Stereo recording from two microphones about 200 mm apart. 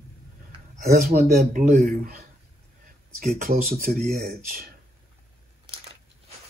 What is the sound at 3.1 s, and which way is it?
Speech, 45° right (ahead or behind).